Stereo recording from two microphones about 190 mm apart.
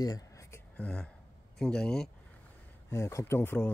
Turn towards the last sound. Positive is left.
turn(degrees=10)  # may be behind; listen again after turning